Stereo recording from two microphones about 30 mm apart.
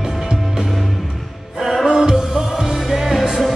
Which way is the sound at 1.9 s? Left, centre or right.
Right.